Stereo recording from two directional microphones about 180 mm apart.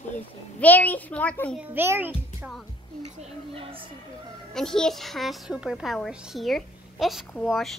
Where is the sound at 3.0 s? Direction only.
35° right (ahead or behind).